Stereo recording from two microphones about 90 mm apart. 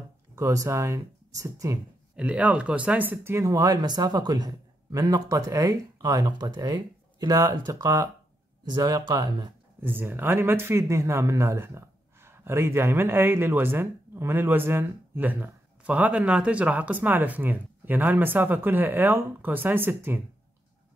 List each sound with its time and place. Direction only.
0.4 s speech: 35° right (ahead or behind)
2.1 s speech: 15° right (ahead or behind); by 9.5 s 50° right (ahead or behind)
9.8 s speech: 25° right (ahead or behind)